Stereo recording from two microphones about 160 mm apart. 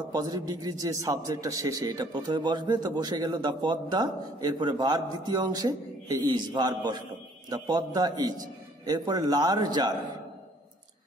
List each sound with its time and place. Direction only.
0.1 s a man's voice: 25° right (ahead or behind)